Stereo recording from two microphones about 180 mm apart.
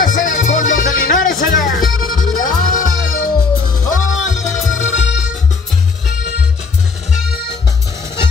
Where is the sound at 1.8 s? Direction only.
Centre (ahead or behind).